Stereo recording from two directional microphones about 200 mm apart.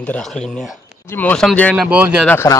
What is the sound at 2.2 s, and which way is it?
Speech, 10° left (ahead or behind).